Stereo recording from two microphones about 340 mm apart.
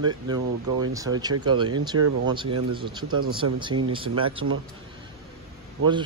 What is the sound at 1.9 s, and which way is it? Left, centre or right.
Speech, right.